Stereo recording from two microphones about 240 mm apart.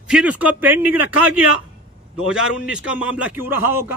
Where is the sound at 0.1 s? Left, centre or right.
Centre.